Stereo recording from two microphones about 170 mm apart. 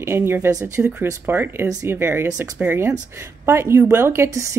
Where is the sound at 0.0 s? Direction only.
15° right (ahead or behind).